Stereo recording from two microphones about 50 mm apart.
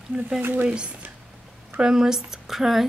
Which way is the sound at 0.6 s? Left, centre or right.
Right.